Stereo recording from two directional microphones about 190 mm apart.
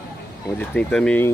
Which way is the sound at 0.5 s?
5° left (ahead or behind).